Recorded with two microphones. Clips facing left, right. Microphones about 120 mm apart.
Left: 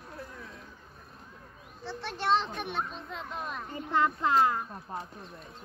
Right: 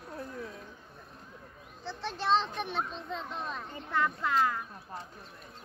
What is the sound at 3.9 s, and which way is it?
Speech, 25° left (ahead or behind).